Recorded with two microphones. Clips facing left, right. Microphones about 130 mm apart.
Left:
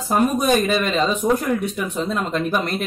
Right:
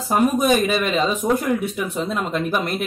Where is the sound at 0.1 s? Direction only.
5° right (ahead or behind).